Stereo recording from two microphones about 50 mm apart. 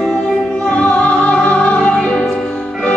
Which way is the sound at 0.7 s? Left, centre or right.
Left.